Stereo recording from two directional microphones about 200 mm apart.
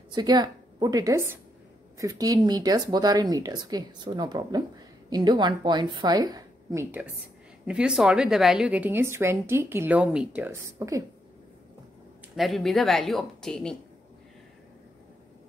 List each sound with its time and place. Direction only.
0.1 s a woman's voice: 20° right (ahead or behind)
12.4 s speech: centre (ahead or behind)